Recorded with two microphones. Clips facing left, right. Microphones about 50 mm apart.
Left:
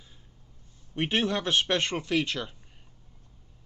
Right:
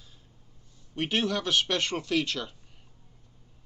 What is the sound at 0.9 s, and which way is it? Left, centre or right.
Speech, left.